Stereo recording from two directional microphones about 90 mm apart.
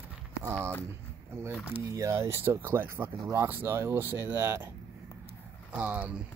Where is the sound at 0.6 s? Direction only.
15° left (ahead or behind).